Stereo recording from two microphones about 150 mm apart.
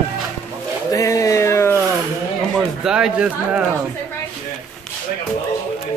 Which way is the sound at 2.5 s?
5° right (ahead or behind).